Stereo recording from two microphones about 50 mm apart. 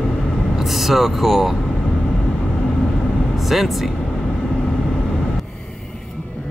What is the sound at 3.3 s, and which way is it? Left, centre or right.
Speech, centre.